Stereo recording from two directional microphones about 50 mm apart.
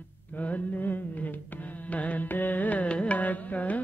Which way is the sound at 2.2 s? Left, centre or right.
Left.